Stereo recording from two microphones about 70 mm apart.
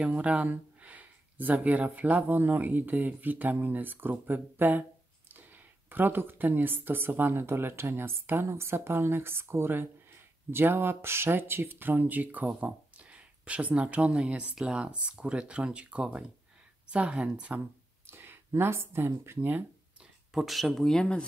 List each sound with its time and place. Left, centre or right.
0.0 s speech: centre
16.8 s a sound: centre
17.5 s speech: right
20.3 s speech: centre